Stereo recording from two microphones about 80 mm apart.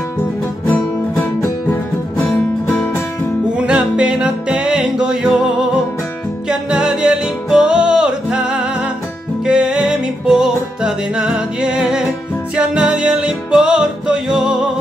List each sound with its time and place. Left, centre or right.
0.7 s music: centre
3.5 s music: centre
6.5 s music: centre